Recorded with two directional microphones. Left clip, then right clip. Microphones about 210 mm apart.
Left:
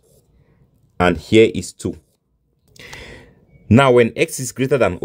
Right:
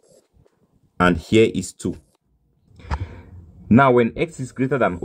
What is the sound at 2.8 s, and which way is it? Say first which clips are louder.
Sigh: right 2 dB; 45° left (ahead or behind).